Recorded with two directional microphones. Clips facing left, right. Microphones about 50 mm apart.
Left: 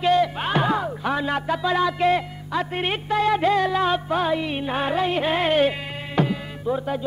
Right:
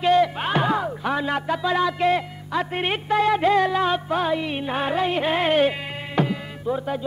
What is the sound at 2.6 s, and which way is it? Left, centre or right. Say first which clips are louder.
Speech: right 1 dB; centre.